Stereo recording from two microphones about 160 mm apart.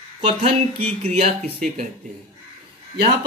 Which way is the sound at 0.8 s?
45° right (ahead or behind).